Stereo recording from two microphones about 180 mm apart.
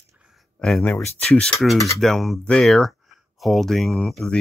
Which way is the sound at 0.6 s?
5° left (ahead or behind).